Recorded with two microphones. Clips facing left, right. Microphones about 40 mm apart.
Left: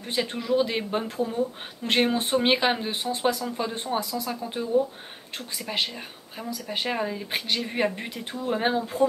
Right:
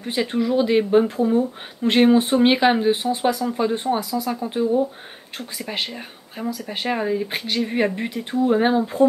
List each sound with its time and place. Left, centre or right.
0.0 s speech: centre
6.4 s speech: centre